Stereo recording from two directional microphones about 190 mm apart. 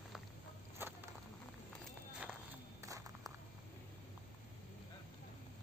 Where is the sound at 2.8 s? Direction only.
15° right (ahead or behind).